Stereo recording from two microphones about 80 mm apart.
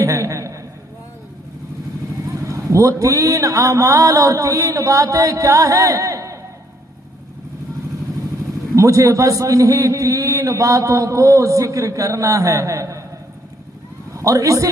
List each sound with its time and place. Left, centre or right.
0.0 s a sound: right
2.2 s a man's voice: right
8.7 s a man's voice: right
14.1 s a man's voice: right